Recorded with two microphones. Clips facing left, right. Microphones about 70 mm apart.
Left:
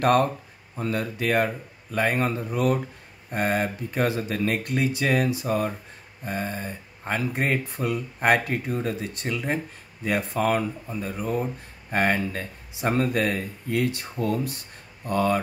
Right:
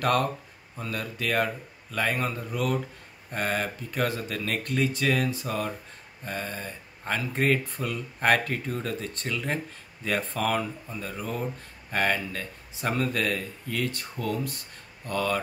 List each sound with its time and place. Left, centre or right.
0.0 s speech: left
10.4 s speech: left